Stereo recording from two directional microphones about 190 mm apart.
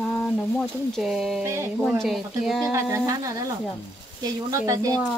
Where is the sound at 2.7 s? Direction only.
15° right (ahead or behind).